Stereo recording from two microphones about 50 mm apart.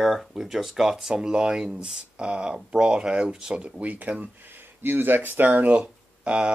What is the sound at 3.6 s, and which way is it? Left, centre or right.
Speech, right.